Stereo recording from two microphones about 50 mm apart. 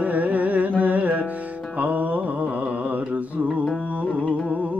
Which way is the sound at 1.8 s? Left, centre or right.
Right.